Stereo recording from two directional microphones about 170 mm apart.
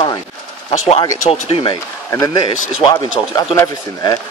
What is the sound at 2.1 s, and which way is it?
Speech, 25° left (ahead or behind).